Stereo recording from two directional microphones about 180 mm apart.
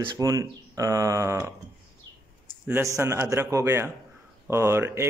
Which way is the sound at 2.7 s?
15° right (ahead or behind).